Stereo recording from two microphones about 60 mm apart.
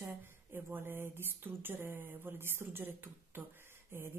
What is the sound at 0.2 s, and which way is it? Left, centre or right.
Speech, right.